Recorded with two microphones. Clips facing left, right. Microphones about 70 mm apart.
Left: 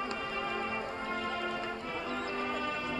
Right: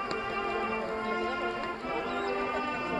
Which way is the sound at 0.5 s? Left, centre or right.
Centre.